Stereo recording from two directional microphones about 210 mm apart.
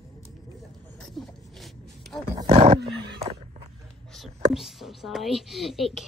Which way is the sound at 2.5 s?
25° right (ahead or behind).